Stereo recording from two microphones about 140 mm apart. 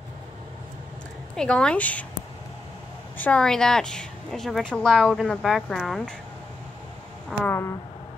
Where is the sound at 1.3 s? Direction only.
5° left (ahead or behind).